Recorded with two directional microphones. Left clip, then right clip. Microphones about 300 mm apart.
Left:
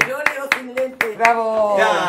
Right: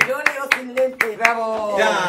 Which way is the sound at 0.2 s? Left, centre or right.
Left.